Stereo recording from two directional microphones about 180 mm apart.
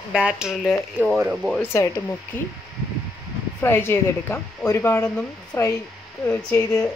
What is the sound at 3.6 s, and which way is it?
Speech, 15° left (ahead or behind).